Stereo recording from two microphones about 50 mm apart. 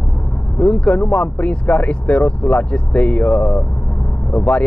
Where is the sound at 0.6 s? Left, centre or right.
Left.